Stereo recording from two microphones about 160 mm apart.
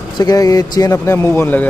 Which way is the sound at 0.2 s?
25° left (ahead or behind).